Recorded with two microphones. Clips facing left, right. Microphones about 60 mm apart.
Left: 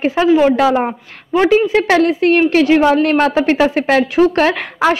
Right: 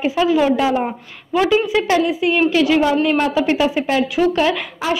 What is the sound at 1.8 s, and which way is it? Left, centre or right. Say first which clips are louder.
Speech: left 4 dB; left.